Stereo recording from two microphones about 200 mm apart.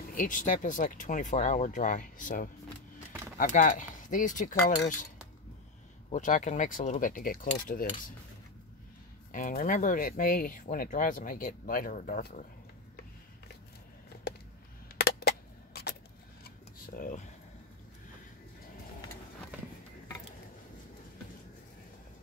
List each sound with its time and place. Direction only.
0.1 s speech: 40° left (ahead or behind)
6.1 s speech: 40° left (ahead or behind)
9.3 s speech: 45° left (ahead or behind)
15.0 s a sound: 50° left (ahead or behind)